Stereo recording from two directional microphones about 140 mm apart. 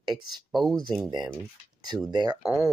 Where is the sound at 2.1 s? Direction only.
30° right (ahead or behind).